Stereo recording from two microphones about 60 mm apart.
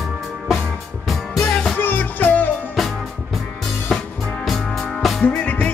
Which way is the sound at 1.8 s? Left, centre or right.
Left.